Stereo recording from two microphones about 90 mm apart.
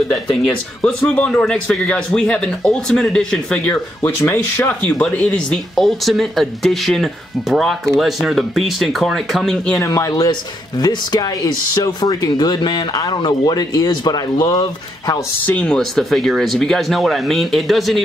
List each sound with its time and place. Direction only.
0.8 s speech: 15° left (ahead or behind)
3.7 s speech: 30° left (ahead or behind)
5.1 s speech: 10° left (ahead or behind)
9.8 s speech: 40° left (ahead or behind)
15.4 s speech: 15° left (ahead or behind)